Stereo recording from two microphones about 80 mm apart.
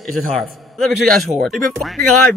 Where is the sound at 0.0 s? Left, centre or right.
Centre.